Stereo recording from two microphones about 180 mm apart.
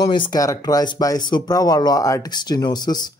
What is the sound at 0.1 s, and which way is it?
Speech, 25° left (ahead or behind).